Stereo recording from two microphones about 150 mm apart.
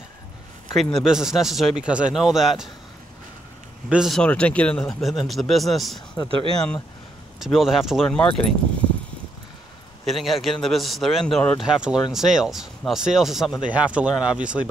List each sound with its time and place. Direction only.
0.7 s speech: centre (ahead or behind)
3.9 s speech: centre (ahead or behind)
6.2 s speech: 30° left (ahead or behind)
7.3 s speech: centre (ahead or behind)
10.0 s speech: centre (ahead or behind)